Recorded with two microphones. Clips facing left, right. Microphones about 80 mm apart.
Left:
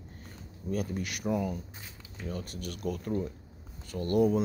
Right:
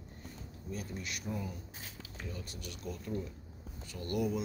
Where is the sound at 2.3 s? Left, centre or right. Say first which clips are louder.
Left 9 dB; left.